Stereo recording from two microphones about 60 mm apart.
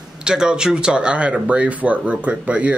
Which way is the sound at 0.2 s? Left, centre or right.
Centre.